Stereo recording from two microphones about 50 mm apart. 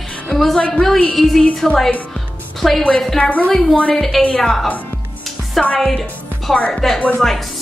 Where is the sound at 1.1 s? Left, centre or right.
Centre.